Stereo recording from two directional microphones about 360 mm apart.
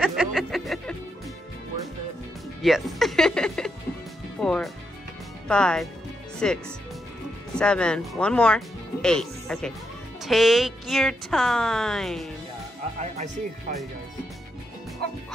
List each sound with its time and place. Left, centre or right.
0.0 s music: centre
2.6 s speech: centre
13.0 s speech: centre